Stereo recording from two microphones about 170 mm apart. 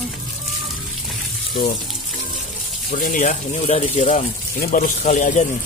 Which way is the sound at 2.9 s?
55° left (ahead or behind).